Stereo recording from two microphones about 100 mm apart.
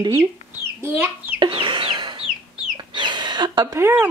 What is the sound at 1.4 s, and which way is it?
Chicken, 55° right (ahead or behind).